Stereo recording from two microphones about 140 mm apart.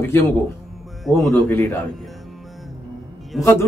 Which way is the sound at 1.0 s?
Centre (ahead or behind).